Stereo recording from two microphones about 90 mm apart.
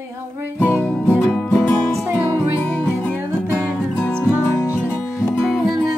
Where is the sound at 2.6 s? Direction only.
30° left (ahead or behind).